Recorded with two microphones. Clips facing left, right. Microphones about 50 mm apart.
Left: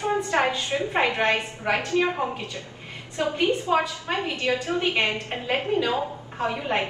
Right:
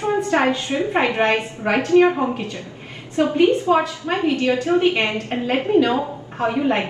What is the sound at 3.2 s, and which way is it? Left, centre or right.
A woman's voice, right.